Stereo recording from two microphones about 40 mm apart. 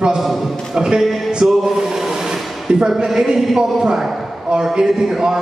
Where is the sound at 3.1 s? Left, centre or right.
Centre.